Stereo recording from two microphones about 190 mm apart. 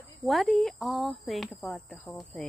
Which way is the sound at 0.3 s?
Centre (ahead or behind).